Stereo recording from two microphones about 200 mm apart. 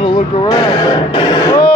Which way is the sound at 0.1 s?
20° left (ahead or behind).